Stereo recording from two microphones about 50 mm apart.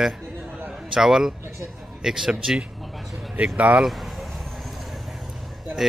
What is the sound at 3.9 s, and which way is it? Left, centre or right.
Vehicle, centre.